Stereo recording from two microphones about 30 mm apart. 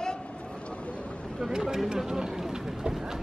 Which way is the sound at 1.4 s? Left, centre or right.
Centre.